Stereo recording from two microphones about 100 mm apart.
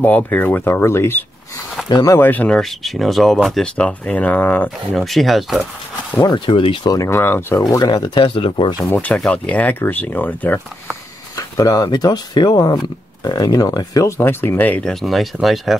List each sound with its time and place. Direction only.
0.0 s speech: 15° left (ahead or behind)
1.9 s speech: 45° left (ahead or behind)
2.1 s speech: 20° left (ahead or behind)
2.6 s speech: centre (ahead or behind)
3.7 s speech: 15° left (ahead or behind)
4.9 s speech: centre (ahead or behind)
6.2 s speech: 50° left (ahead or behind)
7.1 s speech: 20° left (ahead or behind)
7.6 s speech: 40° left (ahead or behind)
8.2 s speech: 65° left (ahead or behind)
8.8 s speech: 15° left (ahead or behind)
11.3 s speech: 35° left (ahead or behind); by 14.9 s 15° left (ahead or behind)
14.9 s speech: centre (ahead or behind)